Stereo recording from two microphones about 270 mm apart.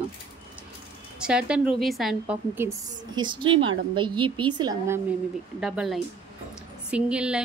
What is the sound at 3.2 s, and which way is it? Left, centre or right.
A woman's voice, centre.